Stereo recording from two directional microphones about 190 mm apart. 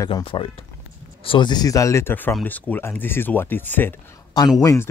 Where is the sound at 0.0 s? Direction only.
25° left (ahead or behind).